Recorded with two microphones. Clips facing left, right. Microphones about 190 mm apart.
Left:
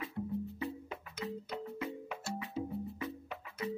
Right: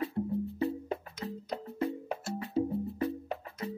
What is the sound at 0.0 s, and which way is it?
Music, 35° right (ahead or behind).